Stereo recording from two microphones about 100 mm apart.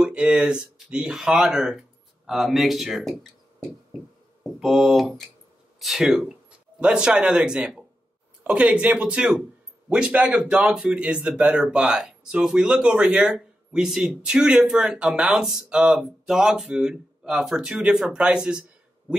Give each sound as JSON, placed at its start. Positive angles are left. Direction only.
{"t": 0.0, "sound": "speech", "side_deg": -10}
{"t": 4.4, "sound": "speech", "side_deg": 0}